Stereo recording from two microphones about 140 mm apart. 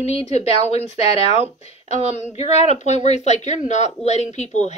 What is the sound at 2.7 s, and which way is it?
Speech, 55° left (ahead or behind).